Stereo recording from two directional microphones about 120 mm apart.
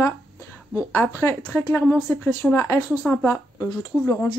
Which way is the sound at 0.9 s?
20° left (ahead or behind).